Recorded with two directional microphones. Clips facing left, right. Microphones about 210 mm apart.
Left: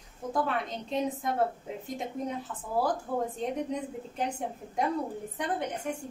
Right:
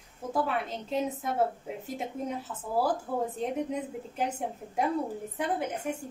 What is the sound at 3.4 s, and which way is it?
A woman's voice, 5° right (ahead or behind).